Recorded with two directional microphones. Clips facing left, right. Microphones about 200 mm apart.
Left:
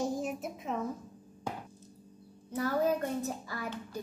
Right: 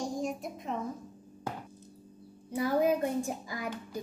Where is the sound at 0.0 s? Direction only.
5° left (ahead or behind).